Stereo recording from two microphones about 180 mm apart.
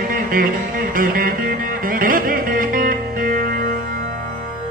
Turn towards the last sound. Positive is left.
turn(degrees=-50)  # may be behind; listen again after turning